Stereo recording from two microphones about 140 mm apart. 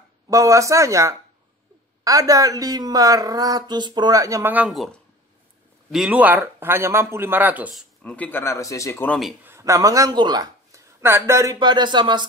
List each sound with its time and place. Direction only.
0.3 s a woman's voice: 25° right (ahead or behind)
4.5 s speech: 10° right (ahead or behind)
5.9 s speech: 5° right (ahead or behind)
8.0 s speech: 10° left (ahead or behind)
9.4 s speech: 20° right (ahead or behind)